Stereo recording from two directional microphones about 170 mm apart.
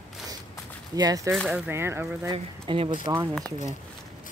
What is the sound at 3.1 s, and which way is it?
Speech, 15° right (ahead or behind).